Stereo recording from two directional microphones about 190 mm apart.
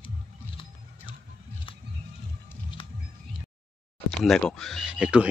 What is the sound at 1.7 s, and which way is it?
Music, 25° left (ahead or behind).